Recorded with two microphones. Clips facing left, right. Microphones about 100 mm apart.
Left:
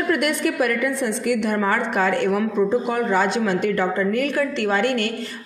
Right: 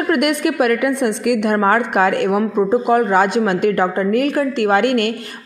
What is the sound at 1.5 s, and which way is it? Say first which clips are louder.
Speech: right 6 dB; 50° right (ahead or behind).